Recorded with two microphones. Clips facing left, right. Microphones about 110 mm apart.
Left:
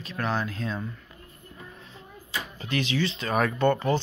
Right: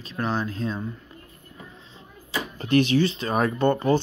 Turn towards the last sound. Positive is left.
turn(degrees=-35)  # may be behind; listen again after turning